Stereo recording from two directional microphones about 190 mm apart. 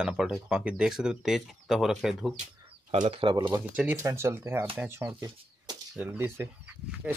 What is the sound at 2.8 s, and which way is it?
Speech, 30° right (ahead or behind).